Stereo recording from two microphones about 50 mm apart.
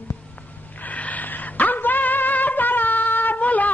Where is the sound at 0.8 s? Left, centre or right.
Left.